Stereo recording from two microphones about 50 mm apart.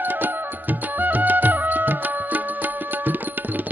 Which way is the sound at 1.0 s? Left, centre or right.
Right.